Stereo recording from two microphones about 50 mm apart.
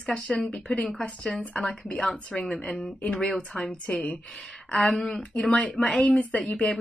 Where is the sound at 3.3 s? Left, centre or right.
Left.